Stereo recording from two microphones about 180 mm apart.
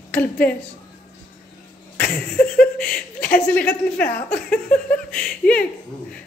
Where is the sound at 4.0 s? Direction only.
55° left (ahead or behind).